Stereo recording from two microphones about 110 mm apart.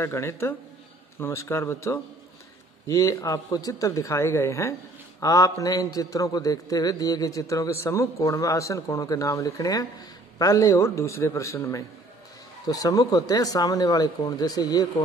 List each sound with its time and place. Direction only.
0.0 s a man's voice: 25° left (ahead or behind)